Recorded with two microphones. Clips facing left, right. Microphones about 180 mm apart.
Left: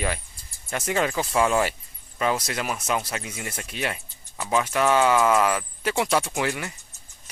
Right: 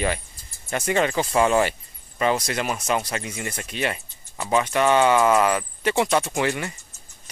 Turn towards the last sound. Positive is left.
turn(degrees=0)  # may be behind; listen again after turning